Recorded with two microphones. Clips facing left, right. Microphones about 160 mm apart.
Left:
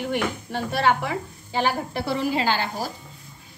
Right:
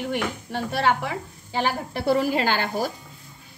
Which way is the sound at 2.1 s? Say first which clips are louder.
Right 3 dB; 50° right (ahead or behind).